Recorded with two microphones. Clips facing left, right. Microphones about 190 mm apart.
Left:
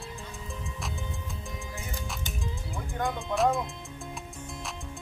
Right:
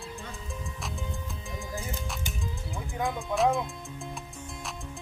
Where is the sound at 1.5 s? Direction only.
Centre (ahead or behind).